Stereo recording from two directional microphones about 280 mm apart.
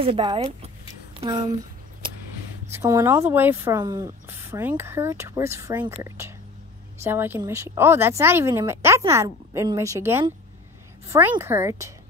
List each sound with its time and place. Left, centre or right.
0.0 s speech: centre
2.7 s speech: centre